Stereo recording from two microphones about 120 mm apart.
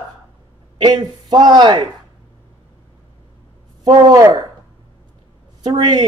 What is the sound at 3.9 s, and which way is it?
Speech, 30° right (ahead or behind).